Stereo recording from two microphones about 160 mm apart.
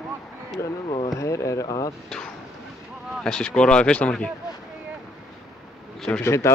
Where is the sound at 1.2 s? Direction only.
20° left (ahead or behind).